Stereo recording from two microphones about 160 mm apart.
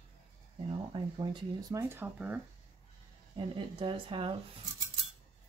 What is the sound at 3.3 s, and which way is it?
Speech, 35° right (ahead or behind).